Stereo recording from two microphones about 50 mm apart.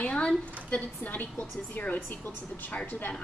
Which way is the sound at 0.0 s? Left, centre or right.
Left.